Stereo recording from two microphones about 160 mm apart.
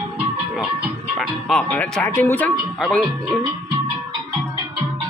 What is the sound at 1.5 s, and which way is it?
Speech, 5° left (ahead or behind).